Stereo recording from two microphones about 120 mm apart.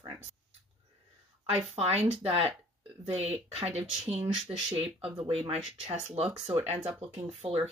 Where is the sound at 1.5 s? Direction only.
60° right (ahead or behind).